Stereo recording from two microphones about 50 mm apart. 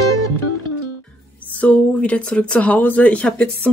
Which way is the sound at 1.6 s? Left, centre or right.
Left.